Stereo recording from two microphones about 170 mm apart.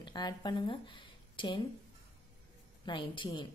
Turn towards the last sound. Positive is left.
turn(degrees=30)  # may be behind; listen again after turning